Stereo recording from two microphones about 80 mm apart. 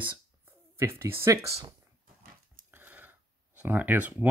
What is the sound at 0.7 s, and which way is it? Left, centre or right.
Speech, right.